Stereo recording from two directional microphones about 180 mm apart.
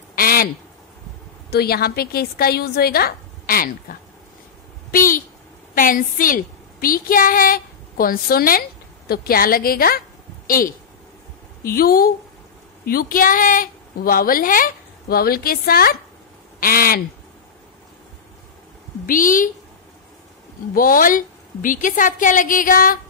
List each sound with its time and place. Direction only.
0.1 s a sound: 55° left (ahead or behind)
1.5 s a woman's voice: 60° left (ahead or behind)
19.0 s a woman's voice: 50° left (ahead or behind)
20.7 s a woman's voice: 50° left (ahead or behind)